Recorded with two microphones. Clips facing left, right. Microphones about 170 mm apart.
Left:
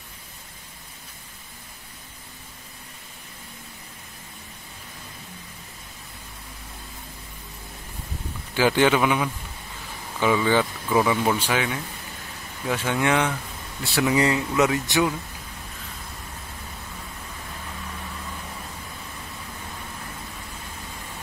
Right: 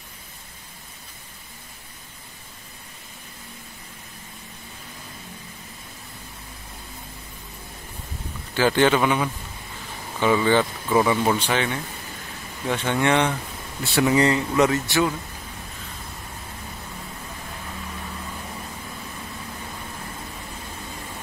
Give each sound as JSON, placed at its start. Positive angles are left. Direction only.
{"t": 8.5, "sound": "a man's voice", "side_deg": 10}
{"t": 14.9, "sound": "a man's voice", "side_deg": 15}